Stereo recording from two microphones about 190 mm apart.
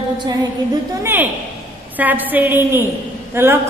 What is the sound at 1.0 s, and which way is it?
A woman's voice, 10° right (ahead or behind).